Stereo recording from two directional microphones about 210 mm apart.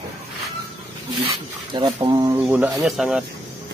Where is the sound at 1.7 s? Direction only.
20° right (ahead or behind).